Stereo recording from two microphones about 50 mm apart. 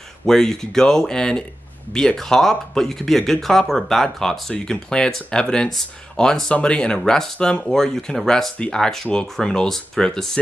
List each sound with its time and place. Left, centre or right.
0.3 s speech: centre
7.6 s speech: centre